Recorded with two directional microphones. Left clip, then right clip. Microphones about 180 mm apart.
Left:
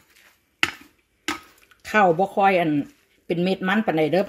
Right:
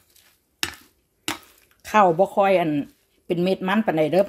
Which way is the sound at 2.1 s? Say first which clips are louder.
Right 1 dB; centre (ahead or behind).